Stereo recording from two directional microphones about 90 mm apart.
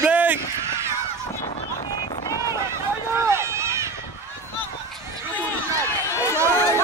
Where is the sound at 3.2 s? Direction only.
30° right (ahead or behind).